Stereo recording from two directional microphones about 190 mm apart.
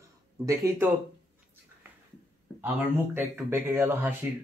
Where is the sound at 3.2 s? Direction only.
10° right (ahead or behind).